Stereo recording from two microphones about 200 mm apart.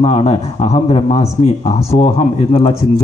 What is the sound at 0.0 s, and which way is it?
Speech, 30° left (ahead or behind).